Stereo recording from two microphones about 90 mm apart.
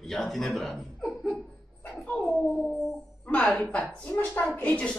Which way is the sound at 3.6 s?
15° left (ahead or behind).